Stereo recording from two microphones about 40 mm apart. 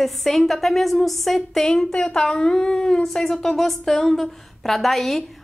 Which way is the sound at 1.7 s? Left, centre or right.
Centre.